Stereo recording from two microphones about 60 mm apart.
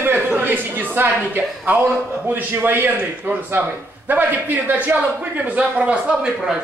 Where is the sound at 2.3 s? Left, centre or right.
Right.